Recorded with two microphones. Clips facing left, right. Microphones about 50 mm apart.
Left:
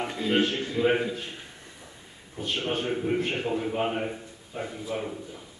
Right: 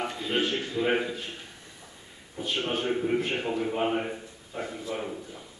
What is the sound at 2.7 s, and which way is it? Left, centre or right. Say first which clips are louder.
A man's voice: right 1 dB; centre.